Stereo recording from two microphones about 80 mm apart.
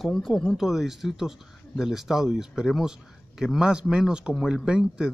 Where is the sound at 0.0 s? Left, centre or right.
Centre.